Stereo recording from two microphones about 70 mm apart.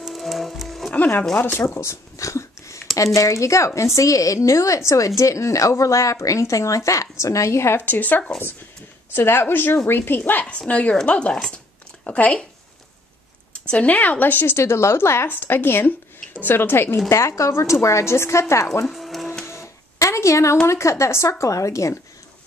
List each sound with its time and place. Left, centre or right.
0.0 s music: centre
0.9 s speech: left
1.7 s a sound: left
3.2 s a woman's voice: left
7.7 s speech: left
11.5 s a sound: centre
13.5 s speech: centre; by 18.7 s left
18.9 s music: centre
19.4 s a sound: left
20.6 s a woman's voice: left